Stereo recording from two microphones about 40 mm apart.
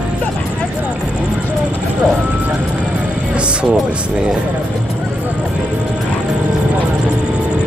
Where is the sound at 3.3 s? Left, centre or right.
Right.